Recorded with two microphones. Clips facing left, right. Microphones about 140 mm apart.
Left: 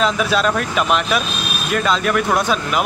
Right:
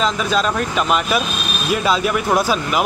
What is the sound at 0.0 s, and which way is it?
Speech, 5° left (ahead or behind).